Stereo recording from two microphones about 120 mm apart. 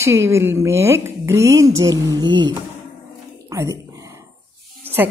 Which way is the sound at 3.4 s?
25° right (ahead or behind).